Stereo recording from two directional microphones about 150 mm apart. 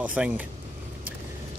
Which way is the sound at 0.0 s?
10° right (ahead or behind).